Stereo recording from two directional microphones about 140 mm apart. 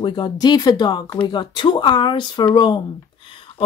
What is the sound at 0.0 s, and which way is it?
Speech, 30° left (ahead or behind).